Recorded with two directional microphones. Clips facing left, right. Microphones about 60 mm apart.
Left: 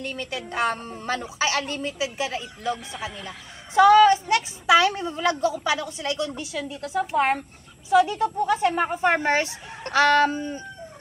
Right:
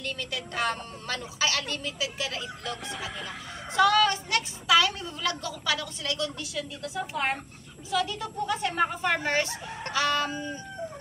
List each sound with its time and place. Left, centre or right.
0.0 s a woman's voice: left
6.8 s a woman's voice: left
9.9 s speech: left